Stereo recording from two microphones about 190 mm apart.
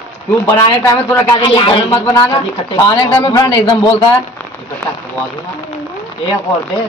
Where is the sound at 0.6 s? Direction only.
20° left (ahead or behind).